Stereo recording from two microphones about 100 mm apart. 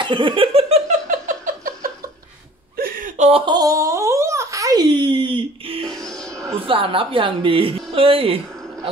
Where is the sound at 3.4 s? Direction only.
40° right (ahead or behind); by 5.8 s 65° right (ahead or behind).